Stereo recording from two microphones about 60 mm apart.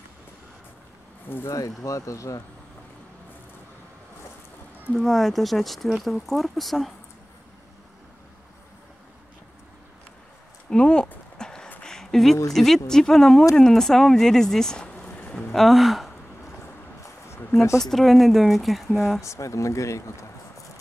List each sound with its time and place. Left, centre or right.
1.5 s speech: left
4.9 s speech: centre
10.7 s speech: centre
11.3 s a sound: centre
12.5 s speech: centre; by 15.3 s left
15.5 s speech: centre
17.3 s a sound: left
17.7 s speech: centre
19.2 s speech: left